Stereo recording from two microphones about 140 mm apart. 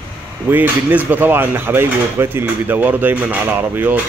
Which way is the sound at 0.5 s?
15° right (ahead or behind).